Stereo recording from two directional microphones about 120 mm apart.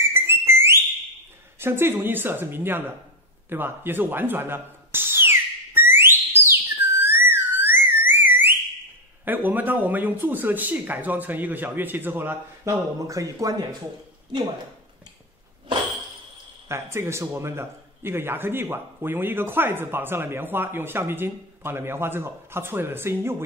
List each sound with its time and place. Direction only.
0.0 s whistle: 20° right (ahead or behind)
1.6 s speech: 20° right (ahead or behind)
3.4 s a sound: 20° right (ahead or behind)
7.0 s theremin: 20° right (ahead or behind)
9.2 s speech: 15° right (ahead or behind)
16.6 s a man's voice: 20° right (ahead or behind)